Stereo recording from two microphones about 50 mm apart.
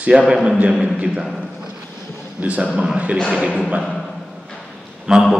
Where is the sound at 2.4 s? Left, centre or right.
Right.